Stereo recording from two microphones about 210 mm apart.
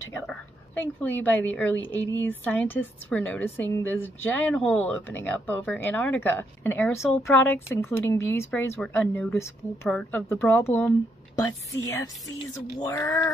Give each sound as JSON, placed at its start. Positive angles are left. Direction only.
{"t": 1.0, "sound": "a woman's voice", "side_deg": 10}